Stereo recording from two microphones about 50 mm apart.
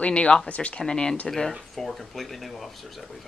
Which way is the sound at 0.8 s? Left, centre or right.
Centre.